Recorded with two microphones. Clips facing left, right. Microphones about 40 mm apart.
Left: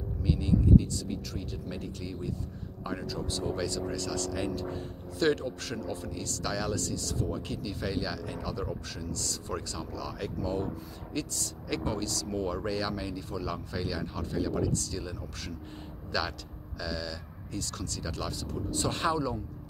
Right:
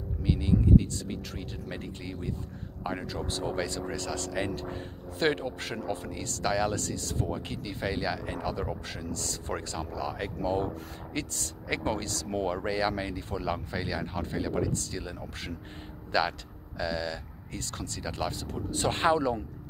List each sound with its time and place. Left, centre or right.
0.2 s speech: right
18.5 s speech: right